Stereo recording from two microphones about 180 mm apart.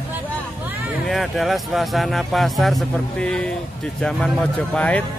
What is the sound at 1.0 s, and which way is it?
Speech, centre (ahead or behind).